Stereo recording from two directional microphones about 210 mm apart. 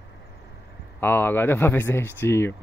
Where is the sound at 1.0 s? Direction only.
10° left (ahead or behind).